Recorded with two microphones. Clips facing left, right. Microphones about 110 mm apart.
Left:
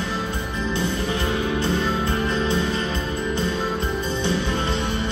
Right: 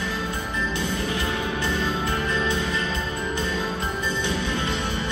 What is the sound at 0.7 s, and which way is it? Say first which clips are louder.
Music: left 4 dB; 30° left (ahead or behind).